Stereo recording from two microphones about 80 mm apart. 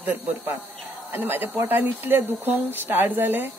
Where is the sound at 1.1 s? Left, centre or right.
Right.